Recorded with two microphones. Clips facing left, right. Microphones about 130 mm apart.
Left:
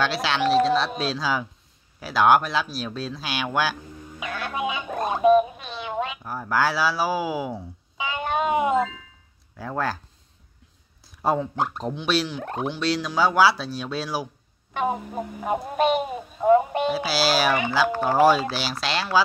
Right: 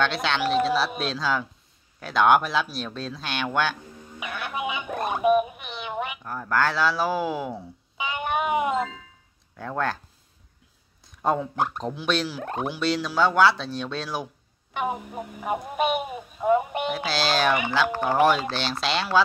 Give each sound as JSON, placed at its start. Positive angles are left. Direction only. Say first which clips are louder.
{"t": 0.0, "sound": "speech", "louder": "left 1 dB", "side_deg": 5}
{"t": 4.2, "sound": "music", "louder": "left 2 dB", "side_deg": -15}
{"t": 5.0, "sound": "a sound", "louder": "left 3 dB", "side_deg": -10}
{"t": 6.2, "sound": "speech", "louder": "even", "side_deg": 10}
{"t": 8.1, "sound": "a sound", "louder": "left 2 dB", "side_deg": -15}
{"t": 9.6, "sound": "speech", "louder": "even", "side_deg": 5}
{"t": 11.1, "sound": "a sound", "louder": "left 1 dB", "side_deg": 0}
{"t": 11.8, "sound": "speech", "louder": "left 1 dB", "side_deg": 0}
{"t": 14.7, "sound": "a woman's voice", "louder": "left 3 dB", "side_deg": -10}
{"t": 16.9, "sound": "speech", "louder": "left 1 dB", "side_deg": 5}
{"t": 17.8, "sound": "speech", "louder": "left 2 dB", "side_deg": -15}
{"t": 18.2, "sound": "speech", "louder": "left 3 dB", "side_deg": 5}